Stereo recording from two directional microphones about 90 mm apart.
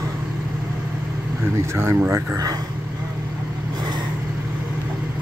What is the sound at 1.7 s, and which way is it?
Speech, 30° right (ahead or behind).